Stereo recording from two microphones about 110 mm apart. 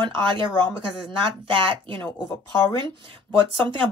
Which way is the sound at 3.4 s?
45° right (ahead or behind).